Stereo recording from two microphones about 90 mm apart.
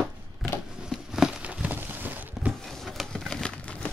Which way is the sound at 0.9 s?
5° right (ahead or behind).